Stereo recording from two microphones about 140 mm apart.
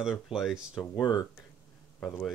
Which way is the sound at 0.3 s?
Centre (ahead or behind).